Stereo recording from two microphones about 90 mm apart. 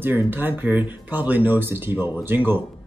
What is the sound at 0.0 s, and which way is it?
Speech, 20° right (ahead or behind).